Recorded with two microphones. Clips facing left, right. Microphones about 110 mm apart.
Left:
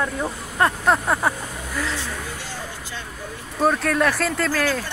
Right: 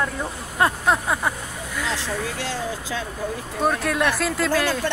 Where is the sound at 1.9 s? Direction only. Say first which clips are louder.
Right 3 dB; 90° right.